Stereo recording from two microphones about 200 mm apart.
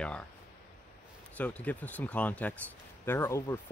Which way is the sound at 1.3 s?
5° left (ahead or behind).